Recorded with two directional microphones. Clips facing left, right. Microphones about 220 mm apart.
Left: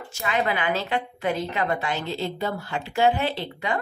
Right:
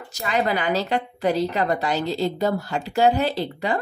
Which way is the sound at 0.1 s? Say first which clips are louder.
Right 3 dB; 40° right (ahead or behind).